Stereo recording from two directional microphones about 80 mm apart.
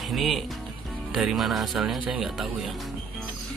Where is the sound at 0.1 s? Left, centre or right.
Centre.